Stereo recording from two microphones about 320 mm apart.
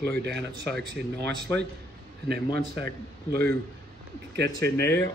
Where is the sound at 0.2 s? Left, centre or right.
Right.